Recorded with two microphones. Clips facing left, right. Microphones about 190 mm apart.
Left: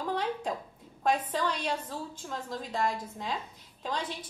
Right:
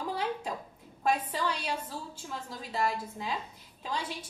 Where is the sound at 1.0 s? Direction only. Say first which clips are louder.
Left 1 dB; 10° right (ahead or behind).